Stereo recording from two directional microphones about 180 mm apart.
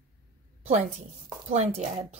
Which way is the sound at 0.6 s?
40° right (ahead or behind).